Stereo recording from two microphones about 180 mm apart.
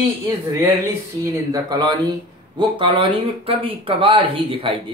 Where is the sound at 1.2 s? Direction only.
20° right (ahead or behind).